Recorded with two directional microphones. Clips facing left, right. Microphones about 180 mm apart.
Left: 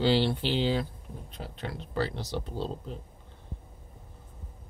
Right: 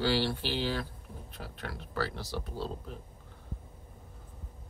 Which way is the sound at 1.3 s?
20° left (ahead or behind).